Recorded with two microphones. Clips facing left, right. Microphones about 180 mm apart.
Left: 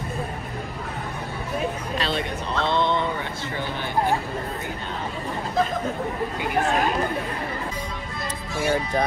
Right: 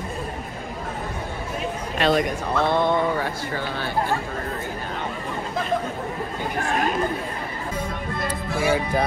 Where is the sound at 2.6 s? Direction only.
50° right (ahead or behind).